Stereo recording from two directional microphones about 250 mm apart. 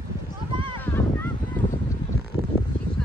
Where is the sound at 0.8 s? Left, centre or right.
Centre.